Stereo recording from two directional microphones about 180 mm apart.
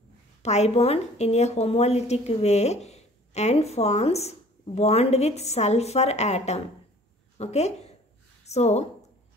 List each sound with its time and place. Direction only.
0.4 s a woman's voice: 40° left (ahead or behind)